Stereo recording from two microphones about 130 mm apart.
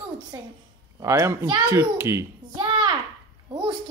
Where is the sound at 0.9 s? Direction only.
25° right (ahead or behind).